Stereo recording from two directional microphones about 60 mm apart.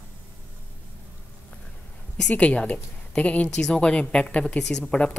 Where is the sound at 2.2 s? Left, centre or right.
Centre.